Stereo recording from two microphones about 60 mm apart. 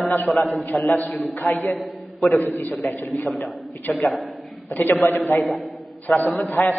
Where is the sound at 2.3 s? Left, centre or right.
Left.